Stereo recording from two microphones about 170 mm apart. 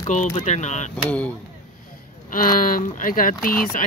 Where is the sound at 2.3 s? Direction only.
55° left (ahead or behind).